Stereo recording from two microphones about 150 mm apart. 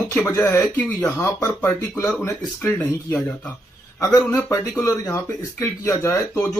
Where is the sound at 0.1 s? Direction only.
15° left (ahead or behind).